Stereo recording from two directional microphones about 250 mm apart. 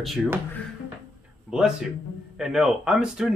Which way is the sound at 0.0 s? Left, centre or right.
Centre.